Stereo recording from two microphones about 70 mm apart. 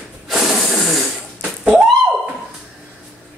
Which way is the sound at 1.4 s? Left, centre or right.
Centre.